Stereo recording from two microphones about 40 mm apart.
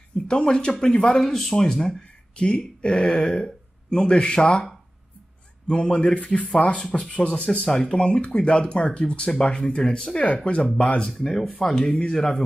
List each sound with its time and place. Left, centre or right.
0.3 s speech: left
1.1 s speech: centre; by 4.6 s left
5.7 s speech: left
7.2 s speech: left
7.6 s speech: centre
11.1 s speech: centre